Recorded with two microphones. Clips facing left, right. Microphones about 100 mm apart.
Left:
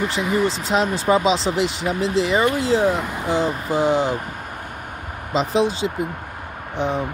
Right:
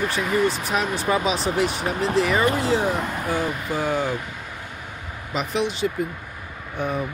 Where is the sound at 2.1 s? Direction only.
25° left (ahead or behind).